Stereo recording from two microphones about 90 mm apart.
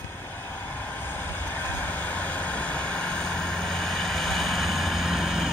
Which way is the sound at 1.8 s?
15° left (ahead or behind).